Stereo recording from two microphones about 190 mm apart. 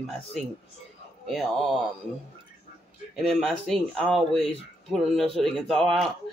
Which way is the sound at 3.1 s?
Centre (ahead or behind).